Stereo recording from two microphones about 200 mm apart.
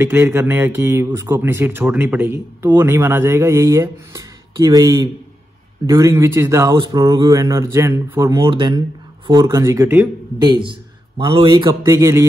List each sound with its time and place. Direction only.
0.0 s a man's voice: 10° right (ahead or behind)